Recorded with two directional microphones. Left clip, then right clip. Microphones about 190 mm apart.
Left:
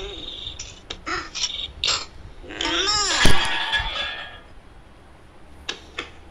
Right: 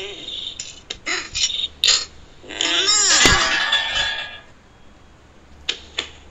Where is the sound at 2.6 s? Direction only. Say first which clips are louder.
Right 4 dB; 15° left (ahead or behind).